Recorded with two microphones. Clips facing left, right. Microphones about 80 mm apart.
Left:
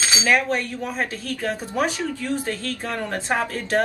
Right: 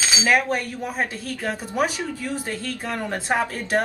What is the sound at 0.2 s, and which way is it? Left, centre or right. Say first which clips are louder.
Speech: even; centre.